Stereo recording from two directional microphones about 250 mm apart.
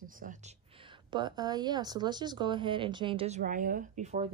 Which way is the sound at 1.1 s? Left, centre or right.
Centre.